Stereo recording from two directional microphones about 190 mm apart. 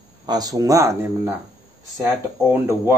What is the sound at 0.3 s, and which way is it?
A man's voice, 20° right (ahead or behind).